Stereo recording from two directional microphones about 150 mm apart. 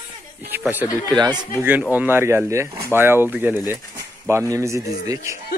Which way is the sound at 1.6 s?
10° right (ahead or behind).